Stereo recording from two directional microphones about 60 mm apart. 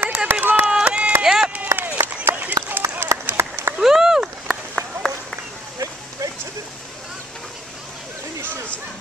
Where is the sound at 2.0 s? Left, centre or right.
Right.